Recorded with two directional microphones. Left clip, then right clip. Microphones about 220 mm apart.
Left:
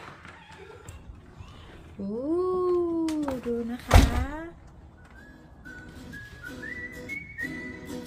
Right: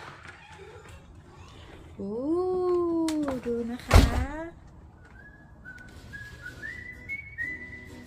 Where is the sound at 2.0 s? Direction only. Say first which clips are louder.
Even; 5° left (ahead or behind).